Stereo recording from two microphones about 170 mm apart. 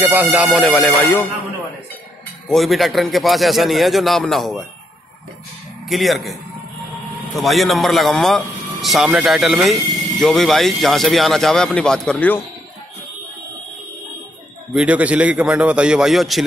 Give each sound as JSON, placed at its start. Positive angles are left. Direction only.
{"t": 0.0, "sound": "speech", "side_deg": -10}
{"t": 2.4, "sound": "speech", "side_deg": 0}
{"t": 5.9, "sound": "speech", "side_deg": 0}
{"t": 7.3, "sound": "speech", "side_deg": 0}
{"t": 14.7, "sound": "a man's voice", "side_deg": -5}